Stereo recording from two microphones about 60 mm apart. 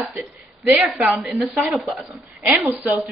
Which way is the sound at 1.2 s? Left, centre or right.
Centre.